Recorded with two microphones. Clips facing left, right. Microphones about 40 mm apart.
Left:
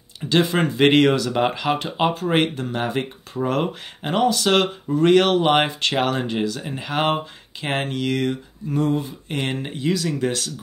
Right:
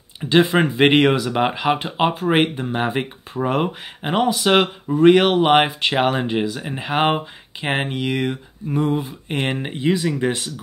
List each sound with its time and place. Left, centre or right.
0.2 s speech: centre